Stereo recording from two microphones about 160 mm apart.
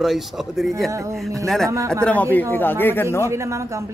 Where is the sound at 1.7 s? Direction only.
20° right (ahead or behind).